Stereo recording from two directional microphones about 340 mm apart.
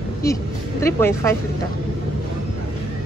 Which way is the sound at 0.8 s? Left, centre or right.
Centre.